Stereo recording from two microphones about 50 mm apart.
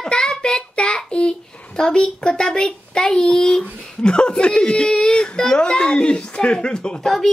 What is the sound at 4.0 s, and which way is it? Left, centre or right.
Speech, centre.